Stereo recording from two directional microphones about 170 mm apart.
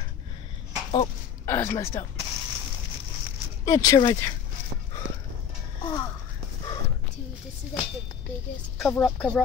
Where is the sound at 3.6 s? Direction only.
20° left (ahead or behind).